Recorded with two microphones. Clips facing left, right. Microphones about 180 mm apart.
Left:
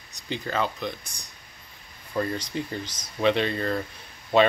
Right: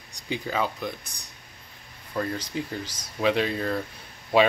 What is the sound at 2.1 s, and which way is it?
Speech, 5° right (ahead or behind).